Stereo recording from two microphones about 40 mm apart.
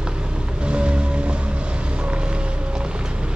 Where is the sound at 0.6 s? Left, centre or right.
Right.